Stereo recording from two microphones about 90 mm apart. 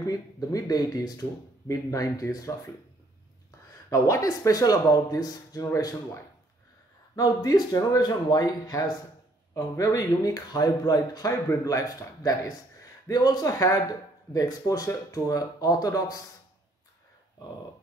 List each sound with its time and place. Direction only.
0.0 s speech: 40° left (ahead or behind)
3.9 s speech: 40° left (ahead or behind)
7.2 s speech: 45° left (ahead or behind)